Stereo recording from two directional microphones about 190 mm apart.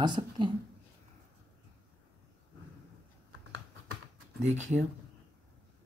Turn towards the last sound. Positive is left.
turn(degrees=-40)  # may be behind; listen again after turning